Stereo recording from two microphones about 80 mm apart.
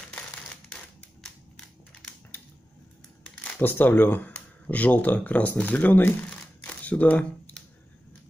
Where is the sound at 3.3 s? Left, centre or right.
Left.